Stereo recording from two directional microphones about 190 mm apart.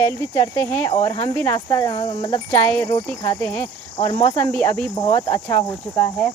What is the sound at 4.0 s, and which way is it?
Speech, 25° left (ahead or behind).